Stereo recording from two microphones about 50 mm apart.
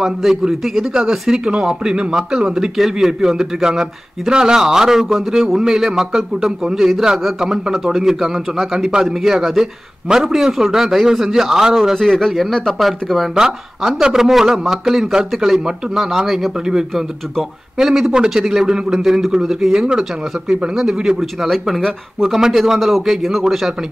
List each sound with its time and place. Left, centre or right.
0.0 s a man's voice: centre
17.7 s speech: centre
21.2 s a man's voice: centre